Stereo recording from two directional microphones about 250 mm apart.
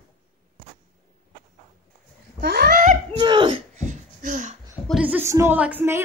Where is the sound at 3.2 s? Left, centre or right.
Centre.